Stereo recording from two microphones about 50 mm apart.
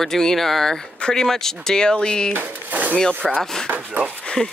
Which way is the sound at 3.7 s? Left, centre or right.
Right.